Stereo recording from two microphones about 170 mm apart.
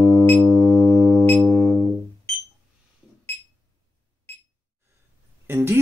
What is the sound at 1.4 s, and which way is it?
Music, centre (ahead or behind).